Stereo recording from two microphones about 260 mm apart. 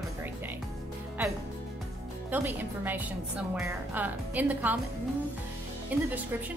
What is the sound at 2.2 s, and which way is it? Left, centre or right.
A woman's voice, centre.